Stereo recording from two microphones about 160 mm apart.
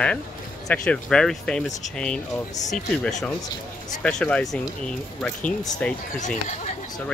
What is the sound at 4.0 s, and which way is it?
Speech, 5° left (ahead or behind).